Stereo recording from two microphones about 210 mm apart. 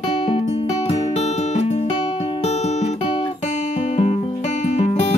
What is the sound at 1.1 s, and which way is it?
Music, 30° left (ahead or behind).